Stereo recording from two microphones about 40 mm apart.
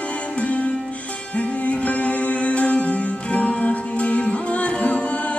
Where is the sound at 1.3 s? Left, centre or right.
Left.